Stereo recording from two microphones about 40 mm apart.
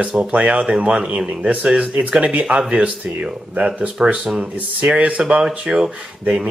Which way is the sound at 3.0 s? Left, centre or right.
Right.